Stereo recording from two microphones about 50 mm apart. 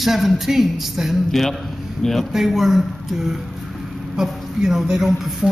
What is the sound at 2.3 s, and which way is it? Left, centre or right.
Speech, centre.